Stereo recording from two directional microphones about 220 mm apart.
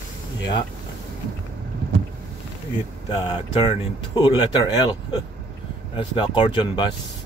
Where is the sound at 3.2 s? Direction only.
20° left (ahead or behind).